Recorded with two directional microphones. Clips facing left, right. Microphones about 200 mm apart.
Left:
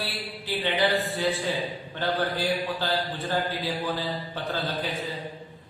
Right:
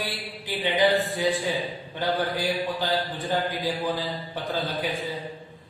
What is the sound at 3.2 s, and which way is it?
A man's voice, 15° right (ahead or behind).